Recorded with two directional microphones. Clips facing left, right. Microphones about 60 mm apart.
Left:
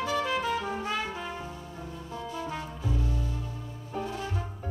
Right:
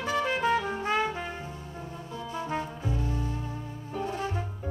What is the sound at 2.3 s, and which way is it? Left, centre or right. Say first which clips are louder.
Music: right 5 dB; right.